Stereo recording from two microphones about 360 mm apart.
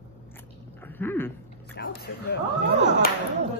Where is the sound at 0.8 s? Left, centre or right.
Centre.